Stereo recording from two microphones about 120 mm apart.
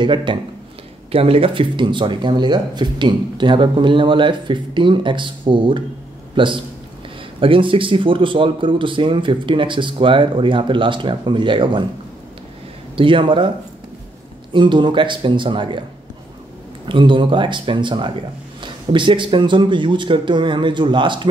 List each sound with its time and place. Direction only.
0.0 s a man's voice: 40° right (ahead or behind)
12.9 s speech: 45° right (ahead or behind)
14.5 s speech: 40° right (ahead or behind)
16.8 s speech: 45° right (ahead or behind)